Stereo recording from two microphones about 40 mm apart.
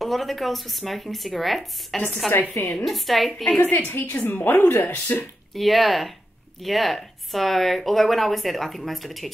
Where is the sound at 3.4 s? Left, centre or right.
Left.